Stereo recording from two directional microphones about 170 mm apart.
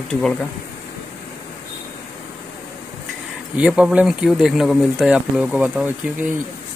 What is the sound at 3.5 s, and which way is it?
Speech, 5° right (ahead or behind).